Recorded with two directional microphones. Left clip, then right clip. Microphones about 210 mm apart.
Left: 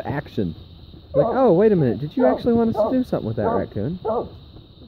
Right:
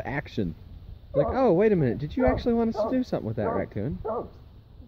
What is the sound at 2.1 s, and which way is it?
Speech, 5° left (ahead or behind).